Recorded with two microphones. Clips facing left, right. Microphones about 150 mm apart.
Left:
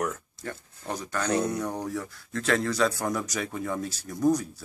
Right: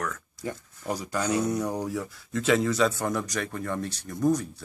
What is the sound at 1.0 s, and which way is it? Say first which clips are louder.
Speech: even; 10° right (ahead or behind).